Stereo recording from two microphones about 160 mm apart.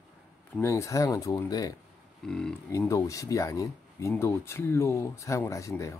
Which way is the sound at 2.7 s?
20° left (ahead or behind).